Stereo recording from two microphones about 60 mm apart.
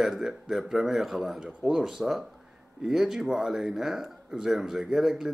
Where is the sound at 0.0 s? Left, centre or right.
Centre.